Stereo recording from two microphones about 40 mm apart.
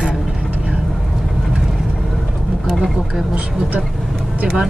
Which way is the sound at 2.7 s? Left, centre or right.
Centre.